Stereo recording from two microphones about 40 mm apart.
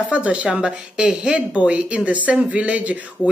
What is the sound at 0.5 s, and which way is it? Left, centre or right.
A woman's voice, right.